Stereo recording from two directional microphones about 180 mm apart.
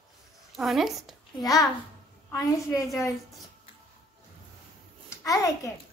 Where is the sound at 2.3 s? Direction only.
15° left (ahead or behind).